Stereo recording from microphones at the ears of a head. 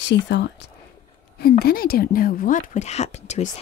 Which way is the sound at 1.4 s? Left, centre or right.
Left.